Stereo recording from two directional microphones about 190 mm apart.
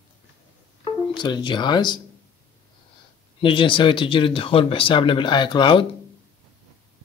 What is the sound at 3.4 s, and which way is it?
Speech, 25° left (ahead or behind).